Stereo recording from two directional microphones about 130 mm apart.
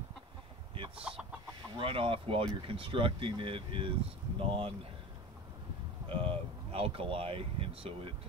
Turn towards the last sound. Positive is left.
turn(degrees=-45)  # may be behind; listen again after turning